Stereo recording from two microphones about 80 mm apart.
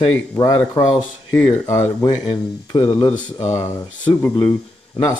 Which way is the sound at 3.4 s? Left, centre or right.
Left.